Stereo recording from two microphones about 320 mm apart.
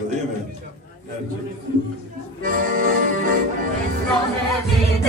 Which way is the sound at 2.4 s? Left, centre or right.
Right.